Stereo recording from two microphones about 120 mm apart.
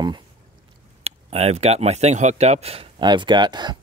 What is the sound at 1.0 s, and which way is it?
Speech, 55° right (ahead or behind).